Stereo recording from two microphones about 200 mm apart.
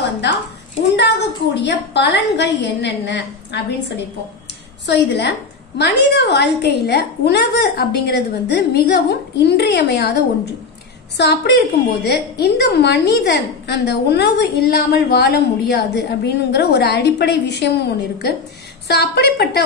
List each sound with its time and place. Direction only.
0.9 s a woman's voice: 60° left (ahead or behind)